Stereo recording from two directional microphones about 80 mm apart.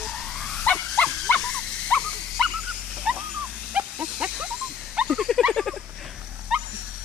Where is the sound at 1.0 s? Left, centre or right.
Centre.